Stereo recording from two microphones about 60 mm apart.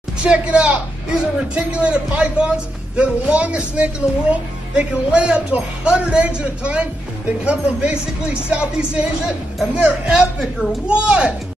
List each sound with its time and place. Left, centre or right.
0.2 s a woman's voice: centre
10.9 s a woman's voice: centre